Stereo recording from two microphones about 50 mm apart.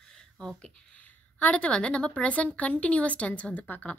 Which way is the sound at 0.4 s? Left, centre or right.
Centre.